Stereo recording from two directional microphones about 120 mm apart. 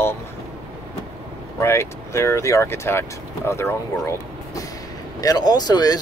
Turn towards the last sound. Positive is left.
turn(degrees=35)  # may be behind; listen again after turning